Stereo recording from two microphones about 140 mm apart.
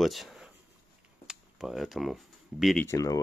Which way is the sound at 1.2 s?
Centre (ahead or behind).